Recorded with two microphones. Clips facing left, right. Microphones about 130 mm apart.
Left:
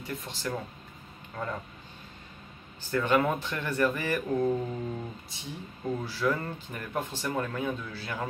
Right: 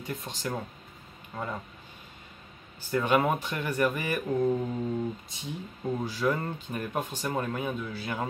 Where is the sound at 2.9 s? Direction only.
15° right (ahead or behind).